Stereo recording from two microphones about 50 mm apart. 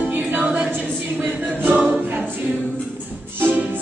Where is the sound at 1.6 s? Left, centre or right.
Right.